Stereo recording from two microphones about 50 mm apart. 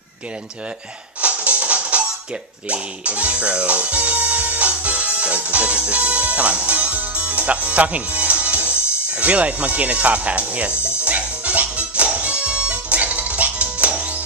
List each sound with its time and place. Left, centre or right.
1.2 s music: right